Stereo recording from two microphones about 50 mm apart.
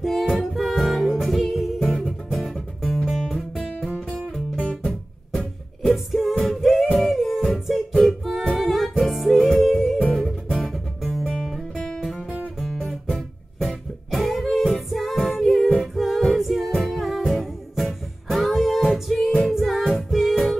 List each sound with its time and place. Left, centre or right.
0.0 s music: centre
3.1 s guitar: centre
4.8 s music: centre
5.8 s music: centre
11.4 s guitar: centre
13.1 s music: centre